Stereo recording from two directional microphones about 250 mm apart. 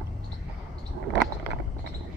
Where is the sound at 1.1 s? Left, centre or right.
Left.